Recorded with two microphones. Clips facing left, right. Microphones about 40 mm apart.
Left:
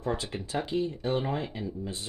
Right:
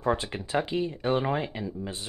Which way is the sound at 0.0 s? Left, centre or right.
Right.